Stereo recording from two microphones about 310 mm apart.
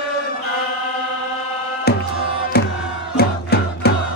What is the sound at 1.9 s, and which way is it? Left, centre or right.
Music, left.